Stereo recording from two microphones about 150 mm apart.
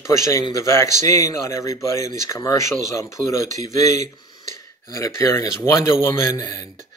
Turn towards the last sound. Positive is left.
turn(degrees=20)  # may be behind; listen again after turning